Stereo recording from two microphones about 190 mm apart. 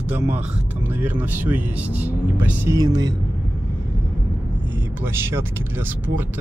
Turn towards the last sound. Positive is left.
turn(degrees=-10)  # may be behind; listen again after turning